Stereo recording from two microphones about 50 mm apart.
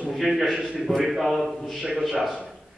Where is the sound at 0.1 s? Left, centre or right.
Centre.